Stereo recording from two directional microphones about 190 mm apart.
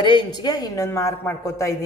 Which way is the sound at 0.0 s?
25° left (ahead or behind).